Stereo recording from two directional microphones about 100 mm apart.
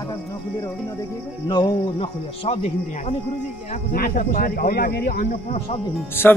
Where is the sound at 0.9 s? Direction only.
50° left (ahead or behind); by 3.2 s 85° left.